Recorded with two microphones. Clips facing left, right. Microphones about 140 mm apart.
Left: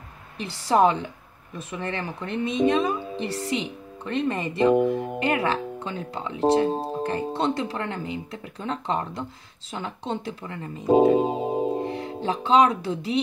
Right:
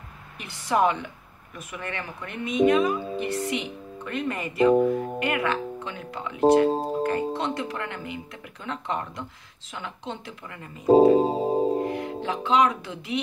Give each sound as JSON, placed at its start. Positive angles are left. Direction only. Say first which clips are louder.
{"t": 0.4, "sound": "speech", "louder": "left 3 dB", "side_deg": 35}
{"t": 4.8, "sound": "music", "louder": "even", "side_deg": 25}
{"t": 5.2, "sound": "speech", "louder": "left 4 dB", "side_deg": 35}
{"t": 10.9, "sound": "music", "louder": "right 2 dB", "side_deg": -35}
{"t": 11.8, "sound": "speech", "louder": "even", "side_deg": 30}